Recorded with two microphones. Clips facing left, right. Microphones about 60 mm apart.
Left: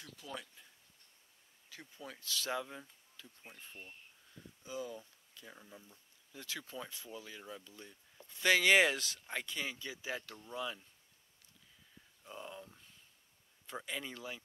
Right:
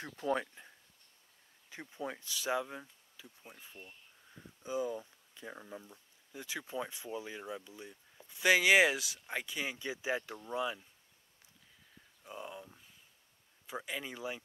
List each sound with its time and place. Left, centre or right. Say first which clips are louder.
0.0 s speech: right 13 dB; right
1.7 s speech: right 8 dB; right
4.6 s speech: right 7 dB; right
12.2 s speech: right 2 dB; centre